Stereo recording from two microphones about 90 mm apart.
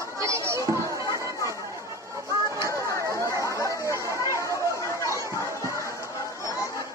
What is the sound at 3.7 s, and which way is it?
Chatter, 35° right (ahead or behind).